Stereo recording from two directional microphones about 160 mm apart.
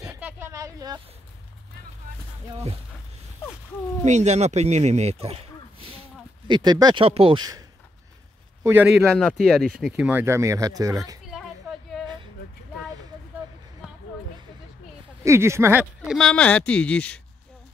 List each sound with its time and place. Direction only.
0.1 s a sound: 15° right (ahead or behind)
4.0 s speech: 45° right (ahead or behind); by 7.6 s 25° right (ahead or behind)
8.6 s speech: 10° right (ahead or behind)
9.0 s speech: 5° left (ahead or behind); by 11.0 s 20° right (ahead or behind)
15.2 s speech: 15° right (ahead or behind)
16.0 s a woman's voice: centre (ahead or behind)